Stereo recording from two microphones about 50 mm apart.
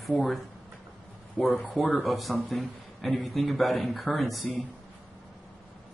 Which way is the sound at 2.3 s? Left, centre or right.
Left.